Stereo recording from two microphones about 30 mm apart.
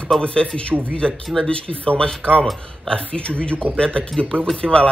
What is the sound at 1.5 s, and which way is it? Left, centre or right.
Speech, left.